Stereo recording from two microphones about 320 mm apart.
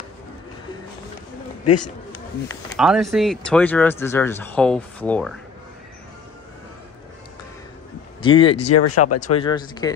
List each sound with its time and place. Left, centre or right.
2.8 s speech: centre
8.2 s speech: centre
8.7 s speech: left
9.4 s speech: centre